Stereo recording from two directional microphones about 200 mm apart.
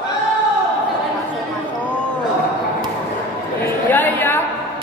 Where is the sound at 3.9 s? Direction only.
10° left (ahead or behind).